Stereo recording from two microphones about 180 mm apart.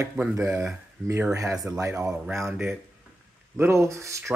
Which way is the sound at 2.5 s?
5° right (ahead or behind).